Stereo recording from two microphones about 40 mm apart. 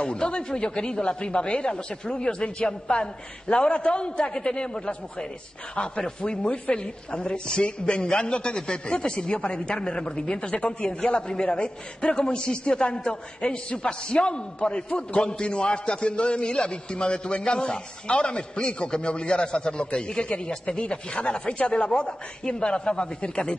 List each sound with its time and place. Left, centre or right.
0.0 s a man's voice: left
10.5 s a man's voice: left